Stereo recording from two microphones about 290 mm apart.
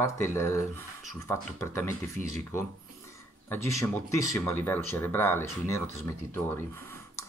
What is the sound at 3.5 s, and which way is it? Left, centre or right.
Speech, centre.